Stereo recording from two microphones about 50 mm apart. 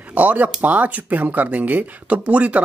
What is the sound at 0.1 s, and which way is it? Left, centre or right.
Speech, right.